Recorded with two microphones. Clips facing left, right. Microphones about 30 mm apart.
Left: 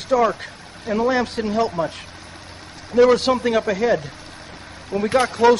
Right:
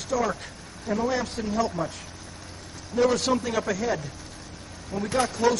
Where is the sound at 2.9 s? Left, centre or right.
Left.